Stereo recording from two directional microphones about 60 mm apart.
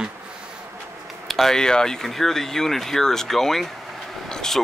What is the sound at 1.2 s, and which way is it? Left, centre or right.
Speech, centre.